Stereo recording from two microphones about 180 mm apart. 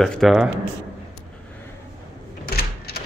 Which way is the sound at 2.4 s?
60° left (ahead or behind).